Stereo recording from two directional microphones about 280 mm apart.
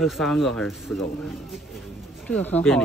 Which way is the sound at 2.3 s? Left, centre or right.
Centre.